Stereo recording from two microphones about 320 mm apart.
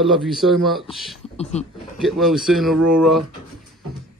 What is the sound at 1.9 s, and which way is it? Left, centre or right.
A man's voice, centre.